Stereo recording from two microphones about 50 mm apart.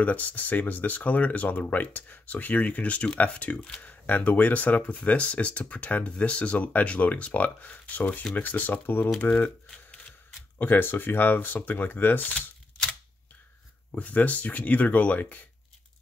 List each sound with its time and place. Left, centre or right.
0.0 s speech: left
10.6 s speech: left
13.9 s speech: left